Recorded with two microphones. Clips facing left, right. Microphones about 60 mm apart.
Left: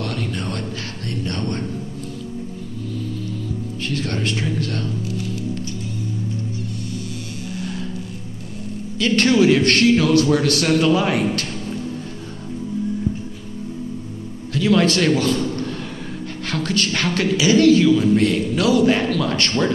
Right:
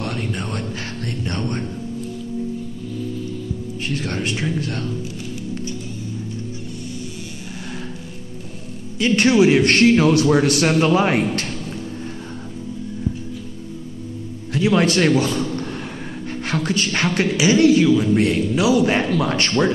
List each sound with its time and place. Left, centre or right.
0.0 s music: right
3.8 s speech: centre
8.9 s speech: centre
14.5 s a man's voice: right
16.4 s speech: right
18.9 s speech: right